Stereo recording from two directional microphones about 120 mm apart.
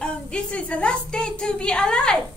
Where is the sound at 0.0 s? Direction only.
10° left (ahead or behind).